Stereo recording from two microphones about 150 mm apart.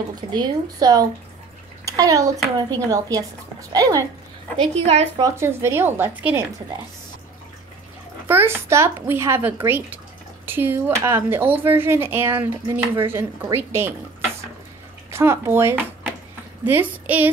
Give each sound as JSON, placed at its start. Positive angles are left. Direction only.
{"t": 0.1, "sound": "a child's voice", "side_deg": -25}
{"t": 4.6, "sound": "a woman's voice", "side_deg": -45}
{"t": 5.2, "sound": "speech", "side_deg": -15}
{"t": 8.3, "sound": "speech", "side_deg": -15}
{"t": 15.0, "sound": "speech", "side_deg": -15}